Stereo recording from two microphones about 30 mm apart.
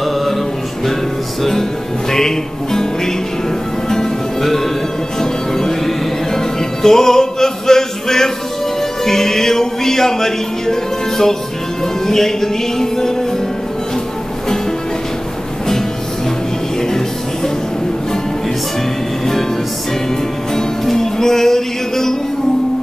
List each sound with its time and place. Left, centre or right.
0.0 s music: centre
1.5 s music: centre
20.8 s music: centre